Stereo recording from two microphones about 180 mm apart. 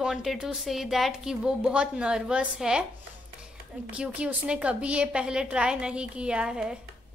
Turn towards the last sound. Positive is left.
turn(degrees=-5)  # may be behind; listen again after turning